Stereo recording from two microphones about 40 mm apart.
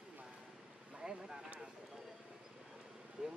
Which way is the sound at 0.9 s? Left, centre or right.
Centre.